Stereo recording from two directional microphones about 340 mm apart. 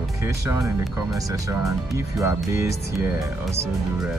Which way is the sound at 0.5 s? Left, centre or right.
Centre.